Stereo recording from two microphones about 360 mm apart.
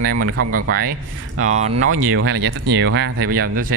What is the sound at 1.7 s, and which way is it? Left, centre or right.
Speech, right.